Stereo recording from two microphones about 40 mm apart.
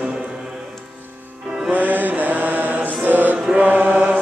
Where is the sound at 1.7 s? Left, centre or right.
Right.